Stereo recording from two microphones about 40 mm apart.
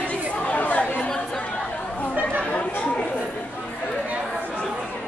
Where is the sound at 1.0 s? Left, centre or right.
Centre.